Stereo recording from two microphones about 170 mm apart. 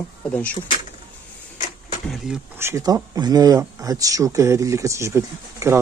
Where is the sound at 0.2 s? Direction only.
10° left (ahead or behind).